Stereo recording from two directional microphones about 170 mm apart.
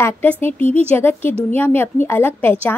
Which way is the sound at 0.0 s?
10° left (ahead or behind).